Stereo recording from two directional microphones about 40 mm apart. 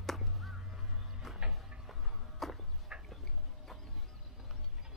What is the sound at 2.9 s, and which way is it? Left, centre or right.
Fowl, right.